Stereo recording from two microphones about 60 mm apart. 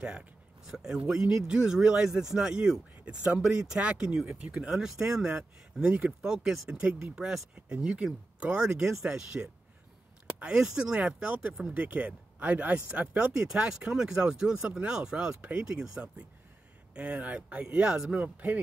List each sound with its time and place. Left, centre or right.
0.0 s speech: right
6.2 s speech: centre
16.9 s speech: right